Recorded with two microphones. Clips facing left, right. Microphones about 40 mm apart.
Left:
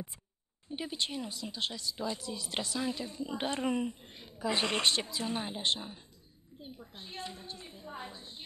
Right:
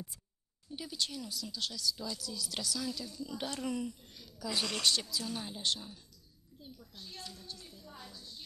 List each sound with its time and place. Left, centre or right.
0.7 s speech: left